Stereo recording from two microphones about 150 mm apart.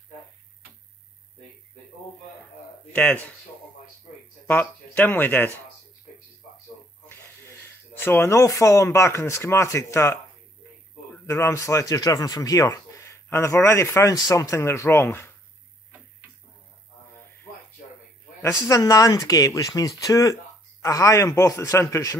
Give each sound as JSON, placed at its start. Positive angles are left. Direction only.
{"t": 2.9, "sound": "speech", "side_deg": 10}
{"t": 4.5, "sound": "speech", "side_deg": 10}
{"t": 7.9, "sound": "speech", "side_deg": 15}
{"t": 11.2, "sound": "speech", "side_deg": 20}
{"t": 18.4, "sound": "speech", "side_deg": 20}